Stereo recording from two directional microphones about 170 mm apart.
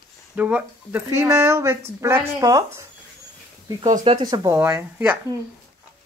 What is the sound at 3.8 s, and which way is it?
Speech, 40° right (ahead or behind).